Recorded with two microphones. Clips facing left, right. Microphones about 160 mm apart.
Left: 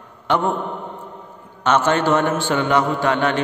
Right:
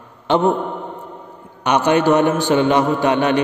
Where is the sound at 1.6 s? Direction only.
15° right (ahead or behind).